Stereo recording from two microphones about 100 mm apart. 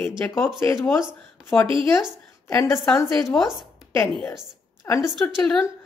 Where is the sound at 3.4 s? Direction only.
Centre (ahead or behind).